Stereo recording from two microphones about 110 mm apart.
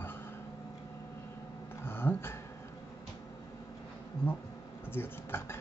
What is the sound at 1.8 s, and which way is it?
Speech, 20° left (ahead or behind).